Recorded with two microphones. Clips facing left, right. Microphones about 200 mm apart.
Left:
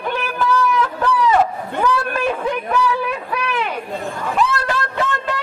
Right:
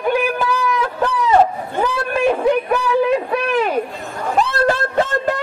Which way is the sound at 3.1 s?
40° right (ahead or behind).